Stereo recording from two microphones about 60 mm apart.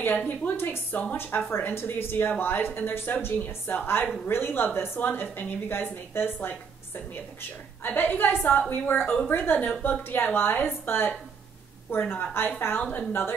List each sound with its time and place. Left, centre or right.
0.1 s a woman's voice: left
7.8 s speech: left